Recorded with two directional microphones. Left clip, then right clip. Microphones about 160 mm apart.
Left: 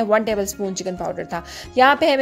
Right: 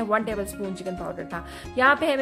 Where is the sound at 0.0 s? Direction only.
35° left (ahead or behind).